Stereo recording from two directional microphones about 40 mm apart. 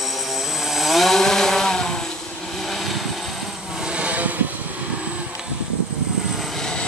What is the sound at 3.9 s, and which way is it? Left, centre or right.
Vehicle, right.